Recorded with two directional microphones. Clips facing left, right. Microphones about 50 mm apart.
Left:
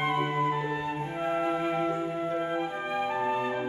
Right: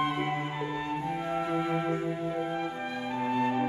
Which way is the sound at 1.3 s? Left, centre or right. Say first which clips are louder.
Left 3 dB; left.